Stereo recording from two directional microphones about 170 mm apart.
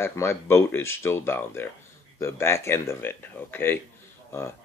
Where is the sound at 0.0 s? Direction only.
15° left (ahead or behind).